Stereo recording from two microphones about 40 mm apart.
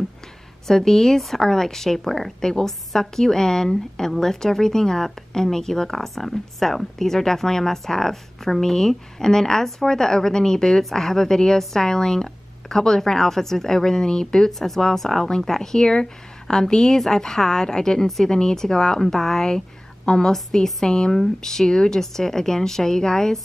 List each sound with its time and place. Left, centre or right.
0.7 s a woman's voice: centre
14.5 s a woman's voice: centre
18.0 s speech: centre
18.3 s a woman's voice: centre